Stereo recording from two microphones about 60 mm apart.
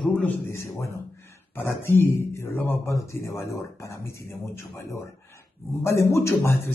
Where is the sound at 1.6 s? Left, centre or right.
Left.